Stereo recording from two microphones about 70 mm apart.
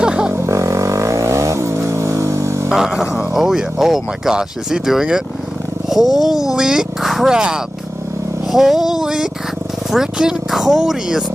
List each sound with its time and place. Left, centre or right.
0.0 s a sound: centre
0.3 s vehicle: right
2.7 s speech: centre